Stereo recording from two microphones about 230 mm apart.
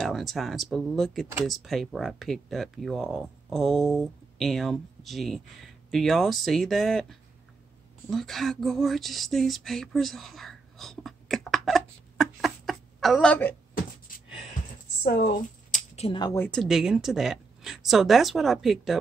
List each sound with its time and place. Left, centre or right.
0.0 s speech: centre
15.0 s speech: left
16.0 s speech: centre
16.4 s speech: centre